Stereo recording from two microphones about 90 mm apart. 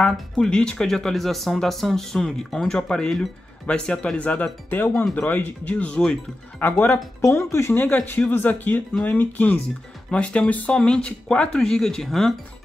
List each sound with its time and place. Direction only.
0.0 s speech: 10° left (ahead or behind)
7.2 s speech: 30° left (ahead or behind)
7.7 s speech: 20° left (ahead or behind); by 12.4 s 5° left (ahead or behind)